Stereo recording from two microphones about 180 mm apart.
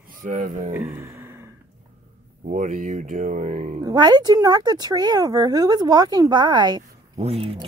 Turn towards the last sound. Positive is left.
turn(degrees=-35)  # may be behind; listen again after turning